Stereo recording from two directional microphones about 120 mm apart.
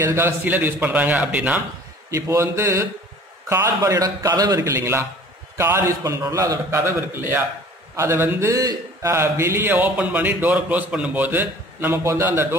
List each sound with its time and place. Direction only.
0.0 s a man's voice: 20° right (ahead or behind)
2.0 s a man's voice: 25° right (ahead or behind)